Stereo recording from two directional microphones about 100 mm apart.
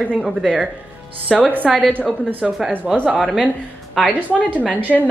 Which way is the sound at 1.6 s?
Centre (ahead or behind).